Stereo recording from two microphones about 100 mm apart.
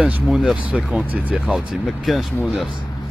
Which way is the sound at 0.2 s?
Centre (ahead or behind).